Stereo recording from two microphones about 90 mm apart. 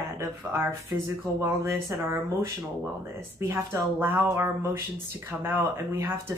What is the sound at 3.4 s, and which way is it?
Speech, 25° right (ahead or behind).